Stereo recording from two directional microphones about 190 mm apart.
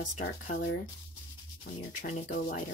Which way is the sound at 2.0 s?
45° left (ahead or behind).